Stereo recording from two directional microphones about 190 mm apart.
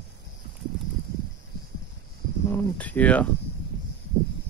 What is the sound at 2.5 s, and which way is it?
Speech, 10° left (ahead or behind).